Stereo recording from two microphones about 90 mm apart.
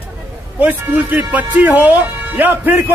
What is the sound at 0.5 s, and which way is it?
Speech, 20° right (ahead or behind).